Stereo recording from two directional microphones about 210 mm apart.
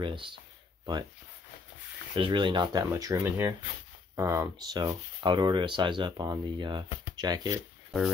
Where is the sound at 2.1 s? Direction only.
25° right (ahead or behind).